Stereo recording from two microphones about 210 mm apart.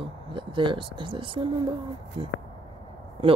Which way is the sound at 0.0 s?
25° right (ahead or behind).